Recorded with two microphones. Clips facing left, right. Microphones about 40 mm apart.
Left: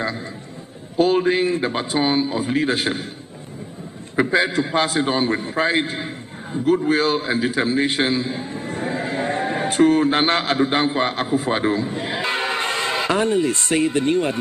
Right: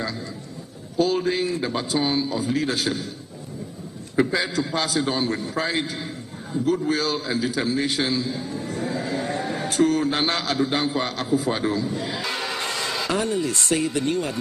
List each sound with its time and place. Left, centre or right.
0.9 s a man's voice: left
4.2 s a man's voice: left